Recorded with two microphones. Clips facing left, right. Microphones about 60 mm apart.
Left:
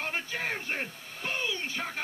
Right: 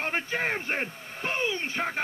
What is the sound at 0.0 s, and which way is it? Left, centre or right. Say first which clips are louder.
Speech: right 5 dB; right.